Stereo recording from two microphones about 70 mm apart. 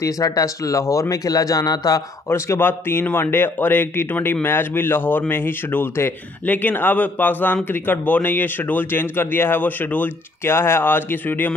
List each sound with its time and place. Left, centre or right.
0.0 s speech: left
2.2 s a man's voice: left